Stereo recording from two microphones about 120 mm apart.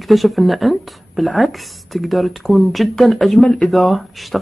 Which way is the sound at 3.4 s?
10° left (ahead or behind).